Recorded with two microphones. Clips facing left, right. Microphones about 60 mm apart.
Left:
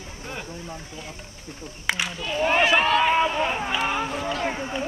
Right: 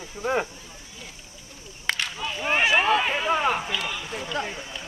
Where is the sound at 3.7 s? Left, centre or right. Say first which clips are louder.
Left 5 dB; left.